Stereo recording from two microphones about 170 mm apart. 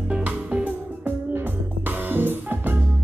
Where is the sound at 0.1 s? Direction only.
10° right (ahead or behind).